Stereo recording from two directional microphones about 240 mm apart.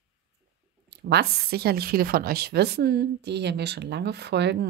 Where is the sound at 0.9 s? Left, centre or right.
Right.